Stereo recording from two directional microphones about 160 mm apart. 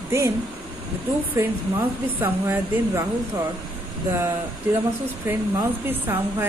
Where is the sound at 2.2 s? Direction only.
15° right (ahead or behind).